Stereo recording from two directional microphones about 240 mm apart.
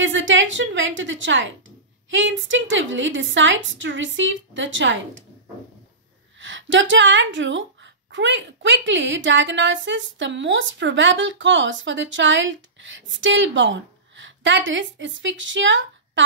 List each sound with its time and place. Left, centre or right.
0.0 s a woman's voice: right
6.4 s a woman's voice: right